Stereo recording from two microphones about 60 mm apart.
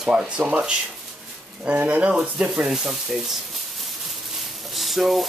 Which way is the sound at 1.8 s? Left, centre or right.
Right.